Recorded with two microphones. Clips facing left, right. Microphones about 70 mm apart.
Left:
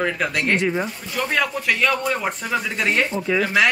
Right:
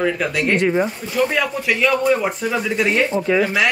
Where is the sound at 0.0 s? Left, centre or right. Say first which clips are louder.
Right 3 dB; centre.